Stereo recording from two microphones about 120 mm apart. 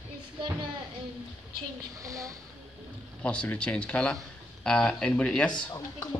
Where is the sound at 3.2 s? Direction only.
10° left (ahead or behind).